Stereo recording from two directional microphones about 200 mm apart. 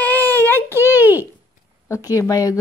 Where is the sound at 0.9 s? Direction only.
10° right (ahead or behind).